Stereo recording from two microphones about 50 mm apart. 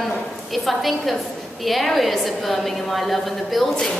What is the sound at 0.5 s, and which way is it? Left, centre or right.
Speech, centre.